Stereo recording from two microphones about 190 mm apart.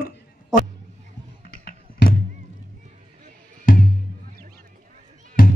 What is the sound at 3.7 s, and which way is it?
Music, 45° left (ahead or behind).